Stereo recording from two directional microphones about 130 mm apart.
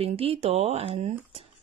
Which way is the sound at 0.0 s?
50° right (ahead or behind).